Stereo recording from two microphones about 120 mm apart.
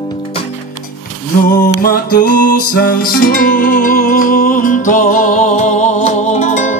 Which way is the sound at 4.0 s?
90° left.